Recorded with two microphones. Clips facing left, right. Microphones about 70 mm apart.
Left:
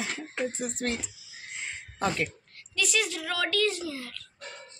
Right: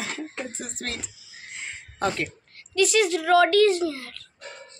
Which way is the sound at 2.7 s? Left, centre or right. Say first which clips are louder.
Right 9 dB; right.